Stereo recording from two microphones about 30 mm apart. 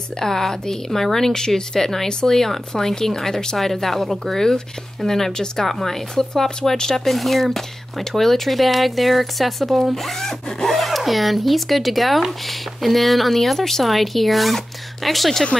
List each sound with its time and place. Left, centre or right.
0.2 s speech: centre
7.1 s speech: centre